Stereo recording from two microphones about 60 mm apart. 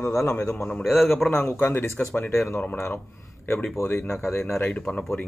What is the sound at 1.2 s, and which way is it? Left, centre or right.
Speech, centre.